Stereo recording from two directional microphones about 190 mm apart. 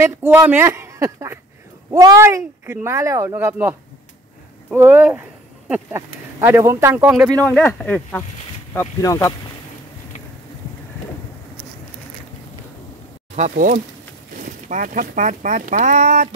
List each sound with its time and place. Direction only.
0.0 s speech: 15° right (ahead or behind)
7.4 s speech: 10° left (ahead or behind)
13.4 s speech: 40° right (ahead or behind)